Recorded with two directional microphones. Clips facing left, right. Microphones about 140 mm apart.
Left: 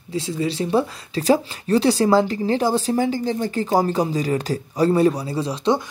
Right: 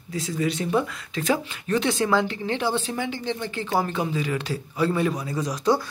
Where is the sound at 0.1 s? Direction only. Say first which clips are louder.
Left 2 dB; 30° left (ahead or behind).